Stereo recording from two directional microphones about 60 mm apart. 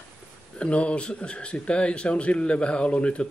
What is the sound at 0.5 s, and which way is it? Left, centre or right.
Speech, centre.